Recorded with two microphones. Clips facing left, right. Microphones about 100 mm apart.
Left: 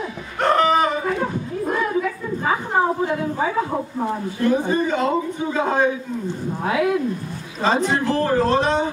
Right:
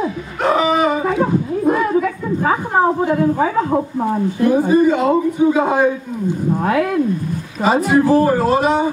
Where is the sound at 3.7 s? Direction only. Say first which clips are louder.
Right 6 dB; 15° right (ahead or behind).